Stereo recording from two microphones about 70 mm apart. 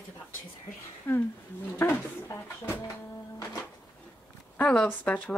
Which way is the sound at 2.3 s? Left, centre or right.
Left.